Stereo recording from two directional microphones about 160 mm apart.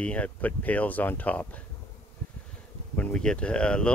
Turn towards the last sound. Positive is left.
turn(degrees=5)  # may be behind; listen again after turning